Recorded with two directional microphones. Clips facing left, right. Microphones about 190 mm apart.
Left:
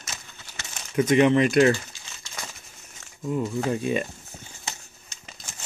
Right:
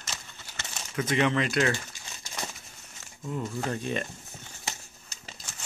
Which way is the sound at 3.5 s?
10° left (ahead or behind).